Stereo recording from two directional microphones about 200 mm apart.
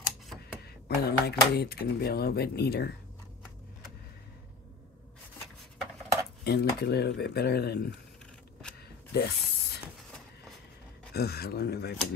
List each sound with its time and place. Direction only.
0.8 s speech: 50° left (ahead or behind)
6.4 s speech: 50° left (ahead or behind)
9.1 s a sound: 50° left (ahead or behind)
11.1 s speech: 50° left (ahead or behind)